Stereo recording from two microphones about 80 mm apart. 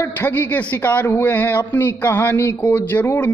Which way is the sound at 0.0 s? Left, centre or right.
Left.